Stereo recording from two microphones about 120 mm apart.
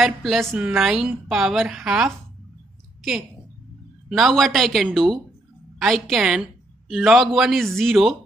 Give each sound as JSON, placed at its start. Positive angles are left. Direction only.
{"t": 0.0, "sound": "speech", "side_deg": 0}
{"t": 0.5, "sound": "speech", "side_deg": -20}
{"t": 0.7, "sound": "speech", "side_deg": -5}
{"t": 4.1, "sound": "a woman's voice", "side_deg": 0}